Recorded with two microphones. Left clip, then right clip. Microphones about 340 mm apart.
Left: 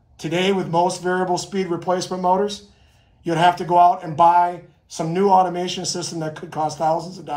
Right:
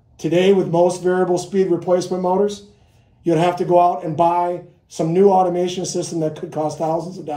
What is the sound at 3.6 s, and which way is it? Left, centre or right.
A man's voice, centre.